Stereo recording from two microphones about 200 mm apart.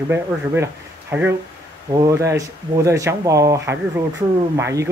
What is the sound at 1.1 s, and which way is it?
Speech, 10° right (ahead or behind).